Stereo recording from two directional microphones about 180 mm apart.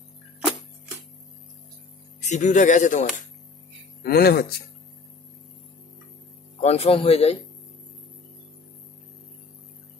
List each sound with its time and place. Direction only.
2.2 s speech: 40° left (ahead or behind)
4.0 s speech: 60° left (ahead or behind)
6.6 s speech: 35° left (ahead or behind)